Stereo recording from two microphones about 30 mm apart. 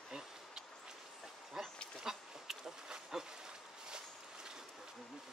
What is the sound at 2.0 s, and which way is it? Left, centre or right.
Goat, centre.